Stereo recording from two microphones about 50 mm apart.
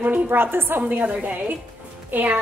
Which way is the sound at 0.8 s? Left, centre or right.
Right.